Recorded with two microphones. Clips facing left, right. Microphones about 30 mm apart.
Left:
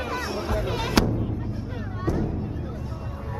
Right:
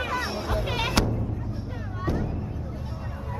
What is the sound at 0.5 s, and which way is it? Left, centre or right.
Music, right.